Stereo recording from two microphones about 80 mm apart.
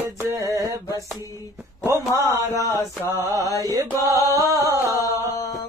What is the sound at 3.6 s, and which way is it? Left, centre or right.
Music, right.